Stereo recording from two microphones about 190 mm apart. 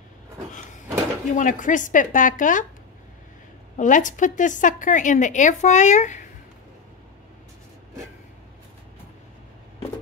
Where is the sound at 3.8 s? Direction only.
40° left (ahead or behind).